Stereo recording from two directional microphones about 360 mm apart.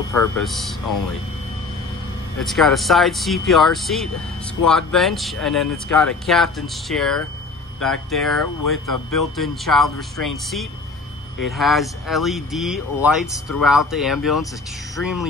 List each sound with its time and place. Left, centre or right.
0.4 s speech: centre
2.4 s speech: centre
8.9 s speech: left
9.4 s speech: centre